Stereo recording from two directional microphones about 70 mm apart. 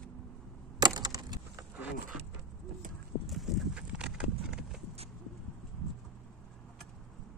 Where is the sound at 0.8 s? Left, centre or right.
Right.